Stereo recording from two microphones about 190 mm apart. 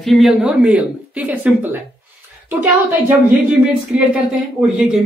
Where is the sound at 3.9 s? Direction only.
5° right (ahead or behind).